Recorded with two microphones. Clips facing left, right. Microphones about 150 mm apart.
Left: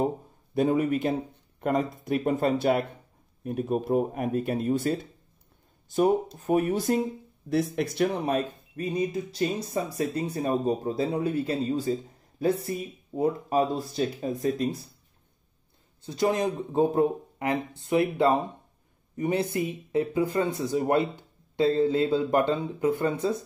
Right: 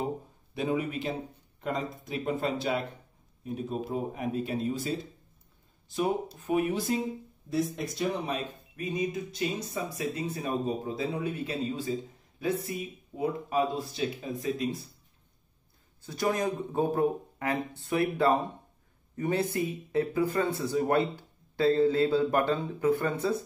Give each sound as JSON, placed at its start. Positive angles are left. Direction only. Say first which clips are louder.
{"t": 0.6, "sound": "speech", "louder": "left 7 dB", "side_deg": 50}
{"t": 5.9, "sound": "speech", "louder": "left 6 dB", "side_deg": 45}
{"t": 7.4, "sound": "speech", "louder": "left 4 dB", "side_deg": 65}
{"t": 8.8, "sound": "speech", "louder": "left 3 dB", "side_deg": 35}
{"t": 16.0, "sound": "speech", "louder": "left 4 dB", "side_deg": 25}